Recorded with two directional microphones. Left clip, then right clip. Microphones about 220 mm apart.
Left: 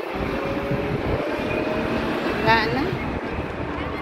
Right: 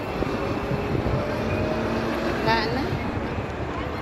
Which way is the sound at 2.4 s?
15° left (ahead or behind).